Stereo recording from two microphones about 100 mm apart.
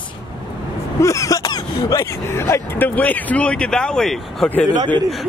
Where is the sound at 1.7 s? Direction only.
35° left (ahead or behind).